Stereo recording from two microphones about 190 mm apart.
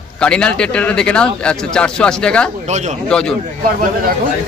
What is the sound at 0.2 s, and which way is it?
Speech, 5° left (ahead or behind).